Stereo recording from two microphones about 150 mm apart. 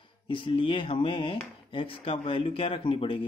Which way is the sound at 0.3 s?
35° left (ahead or behind).